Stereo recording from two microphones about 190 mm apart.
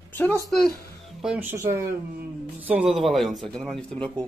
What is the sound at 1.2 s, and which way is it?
Speech, 10° right (ahead or behind).